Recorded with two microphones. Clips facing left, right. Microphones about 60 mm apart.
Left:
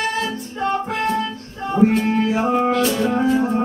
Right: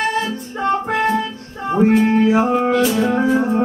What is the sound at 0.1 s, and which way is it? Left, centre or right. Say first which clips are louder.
Music: right 2 dB; centre.